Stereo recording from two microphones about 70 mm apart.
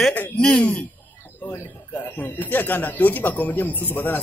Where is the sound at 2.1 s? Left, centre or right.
Left.